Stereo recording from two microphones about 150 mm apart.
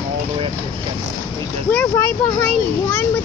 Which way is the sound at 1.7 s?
15° left (ahead or behind).